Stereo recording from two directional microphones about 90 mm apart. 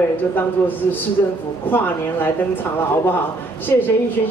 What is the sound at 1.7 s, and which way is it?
Speech, 20° left (ahead or behind).